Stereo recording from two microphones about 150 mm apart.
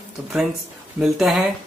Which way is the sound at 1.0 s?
Centre (ahead or behind).